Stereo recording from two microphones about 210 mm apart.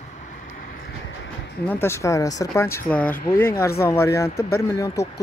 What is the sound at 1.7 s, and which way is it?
Speech, 10° left (ahead or behind).